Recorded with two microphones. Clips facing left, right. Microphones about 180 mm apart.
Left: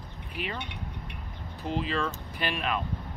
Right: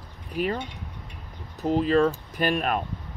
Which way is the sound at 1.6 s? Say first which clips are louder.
Right 10 dB; 45° right (ahead or behind).